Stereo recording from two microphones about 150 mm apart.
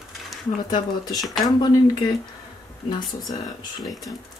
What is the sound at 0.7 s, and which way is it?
Speech, 25° left (ahead or behind).